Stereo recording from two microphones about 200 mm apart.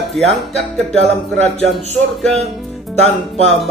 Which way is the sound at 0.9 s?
30° right (ahead or behind).